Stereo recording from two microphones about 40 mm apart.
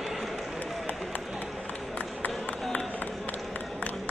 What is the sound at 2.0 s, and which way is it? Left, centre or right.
Run, left.